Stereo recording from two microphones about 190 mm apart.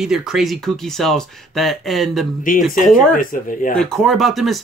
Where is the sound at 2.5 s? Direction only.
45° left (ahead or behind).